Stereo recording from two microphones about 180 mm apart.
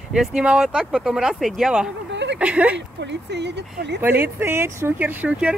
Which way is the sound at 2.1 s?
75° right (ahead or behind).